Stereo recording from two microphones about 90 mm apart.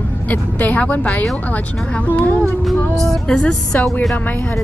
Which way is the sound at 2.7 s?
Centre (ahead or behind).